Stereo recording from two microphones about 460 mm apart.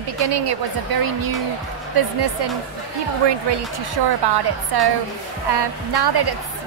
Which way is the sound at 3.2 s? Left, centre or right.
Right.